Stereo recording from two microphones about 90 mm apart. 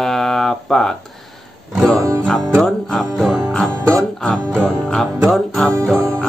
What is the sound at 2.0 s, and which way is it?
Music, 35° right (ahead or behind).